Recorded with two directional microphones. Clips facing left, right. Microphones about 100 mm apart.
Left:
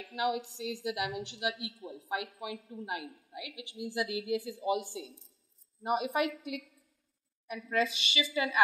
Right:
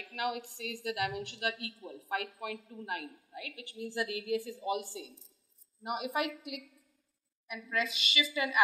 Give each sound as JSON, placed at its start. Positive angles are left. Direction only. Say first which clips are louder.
{"t": 0.1, "sound": "a man's voice", "louder": "left 3 dB", "side_deg": 20}